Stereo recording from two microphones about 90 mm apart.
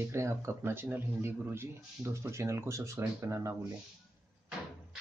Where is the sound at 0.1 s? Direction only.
30° right (ahead or behind).